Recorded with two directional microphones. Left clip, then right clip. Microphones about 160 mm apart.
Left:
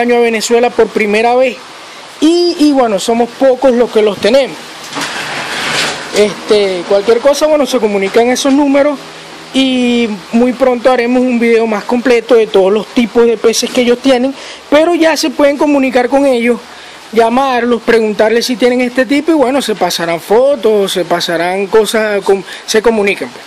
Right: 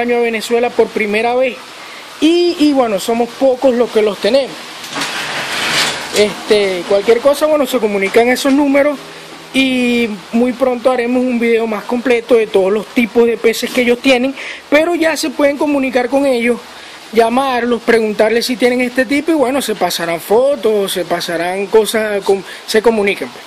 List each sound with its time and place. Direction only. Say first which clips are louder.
0.0 s speech: left 4 dB; 20° left (ahead or behind)
6.1 s speech: left 3 dB; 5° left (ahead or behind)